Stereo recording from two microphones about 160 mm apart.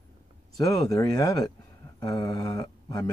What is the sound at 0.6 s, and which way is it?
Speech, 20° left (ahead or behind).